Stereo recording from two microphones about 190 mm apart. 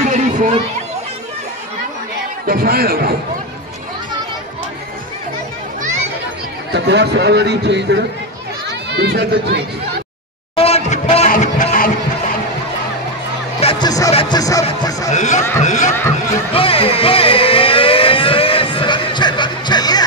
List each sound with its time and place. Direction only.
0.1 s chatter: 40° right (ahead or behind)
2.4 s speech: 50° right (ahead or behind)
5.8 s children playing: 40° right (ahead or behind)
6.7 s a man's voice: 65° right (ahead or behind)
10.5 s music: 30° left (ahead or behind)
13.6 s music: 25° left (ahead or behind)
15.0 s a sound: 40° left (ahead or behind)
16.5 s siren: 30° left (ahead or behind)